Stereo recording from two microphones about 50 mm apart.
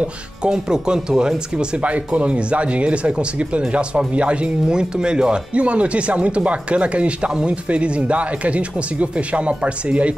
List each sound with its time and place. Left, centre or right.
0.0 s speech: centre
1.8 s speech: right